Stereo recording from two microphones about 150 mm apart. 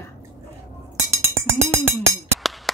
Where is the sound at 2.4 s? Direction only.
Centre (ahead or behind).